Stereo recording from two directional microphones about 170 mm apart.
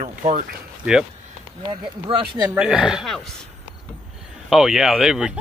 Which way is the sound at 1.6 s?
30° right (ahead or behind).